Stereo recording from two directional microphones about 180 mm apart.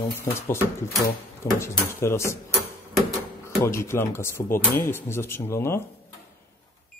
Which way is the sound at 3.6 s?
15° left (ahead or behind).